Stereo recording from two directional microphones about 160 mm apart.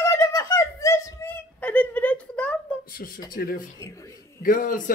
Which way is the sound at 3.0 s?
65° left (ahead or behind).